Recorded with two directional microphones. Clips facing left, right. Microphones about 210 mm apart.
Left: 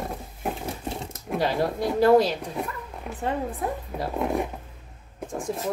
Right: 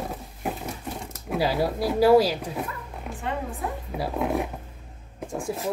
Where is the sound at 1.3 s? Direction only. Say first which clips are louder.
Even; 5° right (ahead or behind).